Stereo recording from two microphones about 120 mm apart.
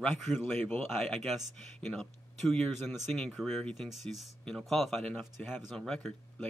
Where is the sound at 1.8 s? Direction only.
5° left (ahead or behind).